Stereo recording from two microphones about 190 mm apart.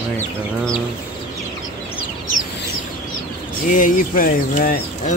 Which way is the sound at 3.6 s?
45° left (ahead or behind).